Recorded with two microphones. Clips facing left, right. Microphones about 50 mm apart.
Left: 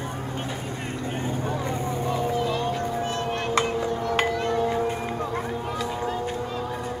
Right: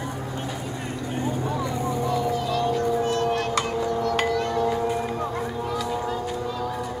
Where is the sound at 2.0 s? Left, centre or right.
Left.